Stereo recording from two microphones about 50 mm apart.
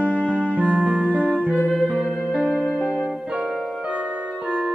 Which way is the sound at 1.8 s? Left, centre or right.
Centre.